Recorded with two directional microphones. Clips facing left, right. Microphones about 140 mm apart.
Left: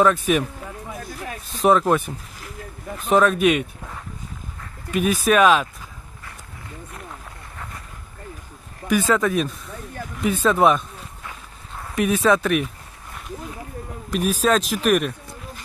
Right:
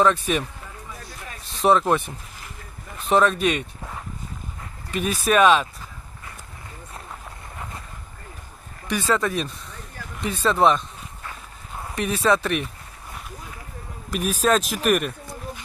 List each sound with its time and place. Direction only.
0.0 s speech: 5° left (ahead or behind)
0.9 s a sound: 50° left (ahead or behind)
1.6 s speech: centre (ahead or behind)
4.9 s speech: 5° left (ahead or behind)
8.8 s speech: 5° left (ahead or behind)
11.9 s speech: 5° left (ahead or behind)
14.4 s speech: centre (ahead or behind)